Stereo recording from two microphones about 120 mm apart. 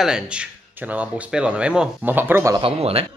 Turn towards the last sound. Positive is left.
turn(degrees=-55)  # may be behind; listen again after turning